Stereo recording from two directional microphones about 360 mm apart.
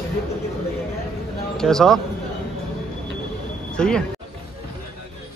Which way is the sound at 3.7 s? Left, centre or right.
Centre.